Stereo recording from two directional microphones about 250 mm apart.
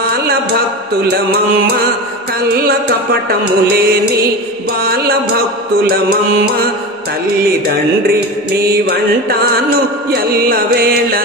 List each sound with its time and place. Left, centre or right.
0.0 s a sound: right
2.6 s music: right
7.4 s music: right